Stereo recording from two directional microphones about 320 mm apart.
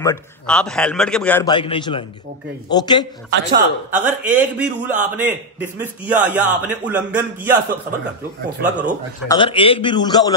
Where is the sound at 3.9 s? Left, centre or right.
Centre.